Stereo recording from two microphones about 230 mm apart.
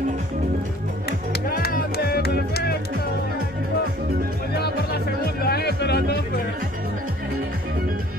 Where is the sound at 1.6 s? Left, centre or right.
Left.